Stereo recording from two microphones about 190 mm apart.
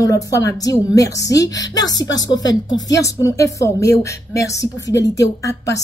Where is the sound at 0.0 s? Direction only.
15° left (ahead or behind).